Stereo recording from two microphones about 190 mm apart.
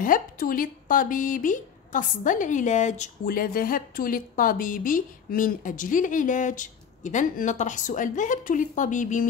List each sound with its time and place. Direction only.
0.0 s speech: 45° left (ahead or behind)